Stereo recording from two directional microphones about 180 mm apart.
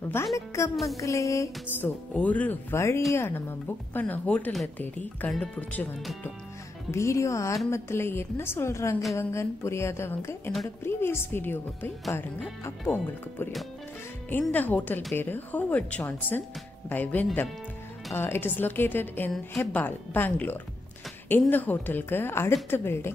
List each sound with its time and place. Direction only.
0.2 s speech: 10° left (ahead or behind)